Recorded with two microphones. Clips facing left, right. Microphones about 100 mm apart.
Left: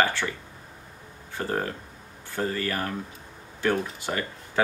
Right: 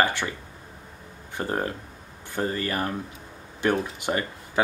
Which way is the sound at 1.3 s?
20° right (ahead or behind).